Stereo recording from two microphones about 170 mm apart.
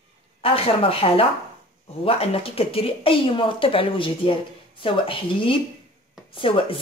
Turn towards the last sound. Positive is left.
turn(degrees=30)  # may be behind; listen again after turning